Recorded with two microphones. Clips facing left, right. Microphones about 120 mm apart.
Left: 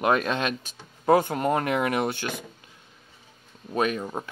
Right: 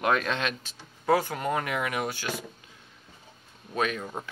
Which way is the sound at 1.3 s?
40° left (ahead or behind).